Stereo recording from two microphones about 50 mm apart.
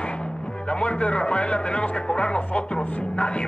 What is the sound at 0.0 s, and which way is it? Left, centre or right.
Speech, left.